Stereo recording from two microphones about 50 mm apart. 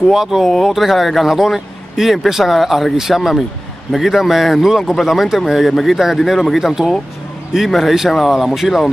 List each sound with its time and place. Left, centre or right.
0.1 s a man's voice: centre